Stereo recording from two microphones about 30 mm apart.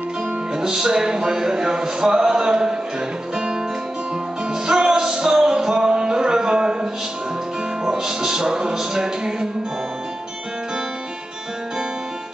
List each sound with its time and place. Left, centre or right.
0.6 s speech: right
4.5 s music: right
5.4 s a sound: right
7.8 s speech: centre